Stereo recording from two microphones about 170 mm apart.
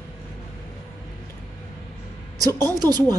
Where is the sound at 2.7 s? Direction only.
25° right (ahead or behind).